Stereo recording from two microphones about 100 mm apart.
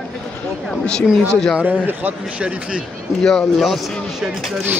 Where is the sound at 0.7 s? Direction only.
5° left (ahead or behind).